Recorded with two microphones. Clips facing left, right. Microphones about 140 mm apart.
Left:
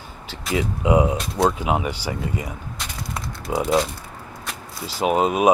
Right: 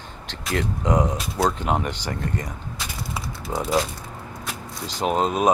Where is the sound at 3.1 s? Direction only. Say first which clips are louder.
Left 4 dB; centre (ahead or behind).